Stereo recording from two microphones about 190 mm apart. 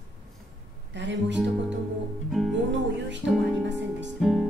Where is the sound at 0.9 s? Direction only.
70° right (ahead or behind).